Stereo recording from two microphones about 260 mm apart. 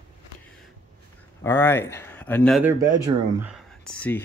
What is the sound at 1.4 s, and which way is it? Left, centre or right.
Speech, centre.